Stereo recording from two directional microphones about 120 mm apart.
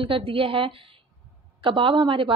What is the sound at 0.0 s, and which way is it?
A woman's voice, 50° right (ahead or behind).